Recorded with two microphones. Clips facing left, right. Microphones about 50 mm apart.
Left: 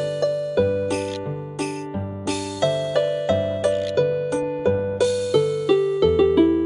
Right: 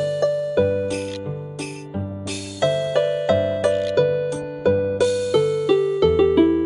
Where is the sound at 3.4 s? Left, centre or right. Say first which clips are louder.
Right 2 dB; right.